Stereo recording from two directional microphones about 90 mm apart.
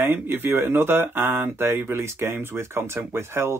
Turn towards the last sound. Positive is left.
turn(degrees=-30)  # may be behind; listen again after turning